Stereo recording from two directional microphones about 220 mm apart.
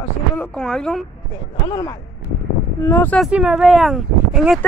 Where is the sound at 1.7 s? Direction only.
20° left (ahead or behind).